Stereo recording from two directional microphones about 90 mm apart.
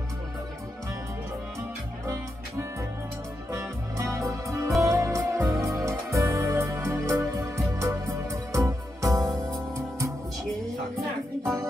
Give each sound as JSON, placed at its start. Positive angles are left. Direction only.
{"t": 3.5, "sound": "music", "side_deg": -35}